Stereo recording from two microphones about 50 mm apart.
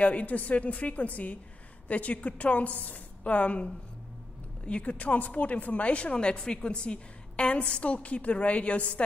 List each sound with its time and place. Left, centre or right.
0.0 s speech: left
4.6 s speech: left